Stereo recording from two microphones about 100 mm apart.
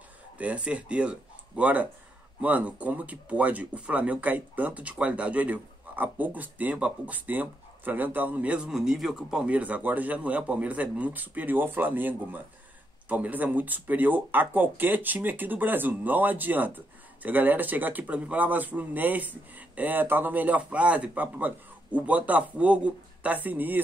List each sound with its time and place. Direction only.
0.4 s speech: 10° right (ahead or behind)